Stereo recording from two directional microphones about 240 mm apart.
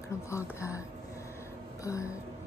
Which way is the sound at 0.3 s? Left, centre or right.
Centre.